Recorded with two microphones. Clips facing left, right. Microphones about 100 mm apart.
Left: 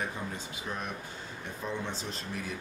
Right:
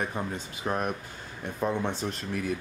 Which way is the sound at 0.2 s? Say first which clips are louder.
Right 5 dB; 45° right (ahead or behind).